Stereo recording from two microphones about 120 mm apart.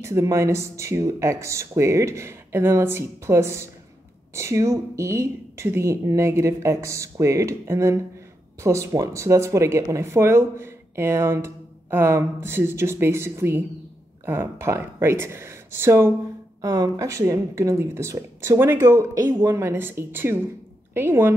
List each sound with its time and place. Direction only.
0.0 s speech: 25° right (ahead or behind)
16.6 s a woman's voice: 35° right (ahead or behind)